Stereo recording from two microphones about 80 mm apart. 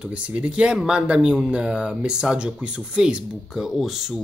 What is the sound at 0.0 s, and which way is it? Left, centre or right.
Speech, centre.